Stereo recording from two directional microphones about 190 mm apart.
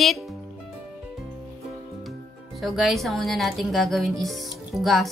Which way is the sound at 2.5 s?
Centre (ahead or behind).